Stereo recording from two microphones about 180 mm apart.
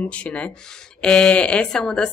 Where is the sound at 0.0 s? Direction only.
5° left (ahead or behind).